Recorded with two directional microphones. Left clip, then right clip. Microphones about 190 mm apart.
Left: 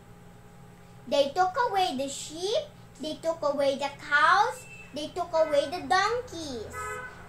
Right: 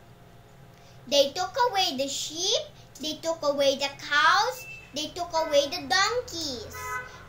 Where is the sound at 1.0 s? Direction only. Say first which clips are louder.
Even; 10° left (ahead or behind).